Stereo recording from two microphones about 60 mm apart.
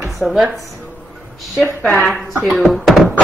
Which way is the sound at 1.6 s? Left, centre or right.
Left.